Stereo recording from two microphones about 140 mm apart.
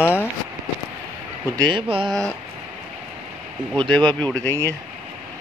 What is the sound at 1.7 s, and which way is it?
Speech, 35° right (ahead or behind).